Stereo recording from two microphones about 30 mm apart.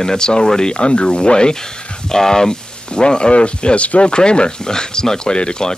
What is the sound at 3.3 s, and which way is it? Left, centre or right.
Speech, left.